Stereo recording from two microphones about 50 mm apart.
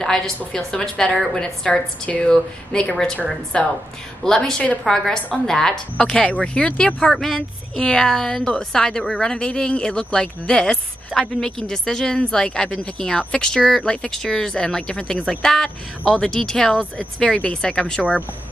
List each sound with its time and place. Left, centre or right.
0.0 s a woman's voice: centre; by 2.2 s left
2.2 s a woman's voice: centre
17.2 s a woman's voice: left